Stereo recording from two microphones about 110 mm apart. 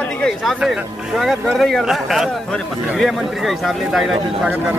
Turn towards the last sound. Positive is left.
turn(degrees=0)  # may be behind; listen again after turning